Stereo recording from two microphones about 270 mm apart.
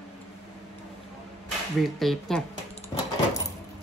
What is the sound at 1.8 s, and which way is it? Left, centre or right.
Speech, centre.